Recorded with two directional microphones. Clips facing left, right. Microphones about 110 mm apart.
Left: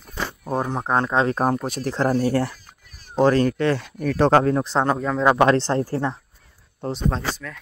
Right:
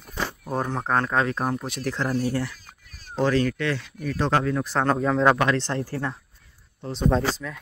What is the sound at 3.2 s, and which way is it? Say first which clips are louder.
Speech: left 5 dB; 40° left (ahead or behind).